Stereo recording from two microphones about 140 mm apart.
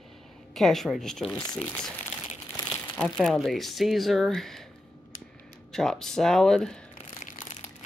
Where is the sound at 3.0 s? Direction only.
Centre (ahead or behind).